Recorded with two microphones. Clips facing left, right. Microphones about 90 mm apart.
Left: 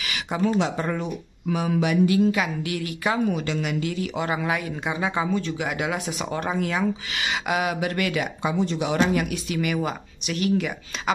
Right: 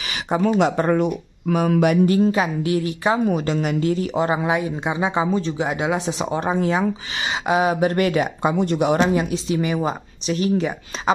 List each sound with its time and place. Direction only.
0.6 s speech: 55° right (ahead or behind)
9.0 s speech: 25° right (ahead or behind)